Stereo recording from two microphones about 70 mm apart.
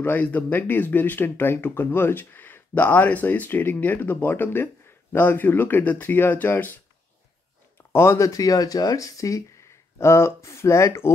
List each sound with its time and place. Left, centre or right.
0.0 s speech: left
7.7 s speech: left